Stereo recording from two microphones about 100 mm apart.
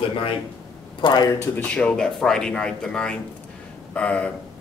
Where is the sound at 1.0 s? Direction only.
50° left (ahead or behind).